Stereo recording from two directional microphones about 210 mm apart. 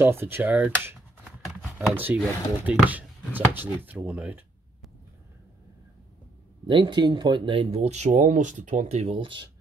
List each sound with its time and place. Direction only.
0.0 s speech: 10° right (ahead or behind)
6.7 s speech: 20° right (ahead or behind)